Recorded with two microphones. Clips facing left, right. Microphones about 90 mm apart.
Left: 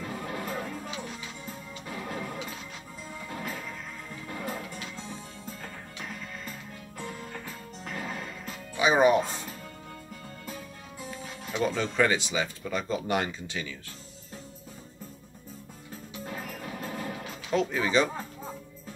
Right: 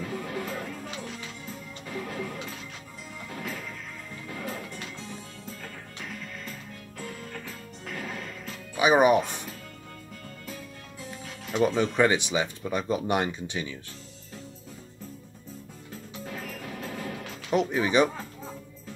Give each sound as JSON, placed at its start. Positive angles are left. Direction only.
{"t": 0.0, "sound": "music", "side_deg": 5}
{"t": 8.7, "sound": "speech", "side_deg": -15}
{"t": 10.4, "sound": "music", "side_deg": 5}
{"t": 11.6, "sound": "speech", "side_deg": -15}
{"t": 16.3, "sound": "music", "side_deg": 5}
{"t": 17.5, "sound": "speech", "side_deg": -15}